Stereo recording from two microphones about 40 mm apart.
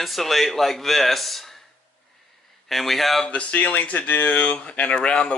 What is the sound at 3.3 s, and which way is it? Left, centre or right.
Speech, left.